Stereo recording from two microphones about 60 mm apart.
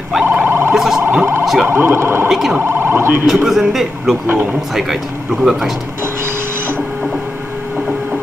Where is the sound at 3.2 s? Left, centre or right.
Centre.